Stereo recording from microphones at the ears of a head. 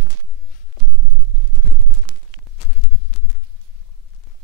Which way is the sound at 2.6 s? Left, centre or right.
Left.